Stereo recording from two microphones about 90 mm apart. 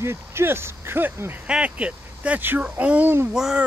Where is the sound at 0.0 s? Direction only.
30° right (ahead or behind).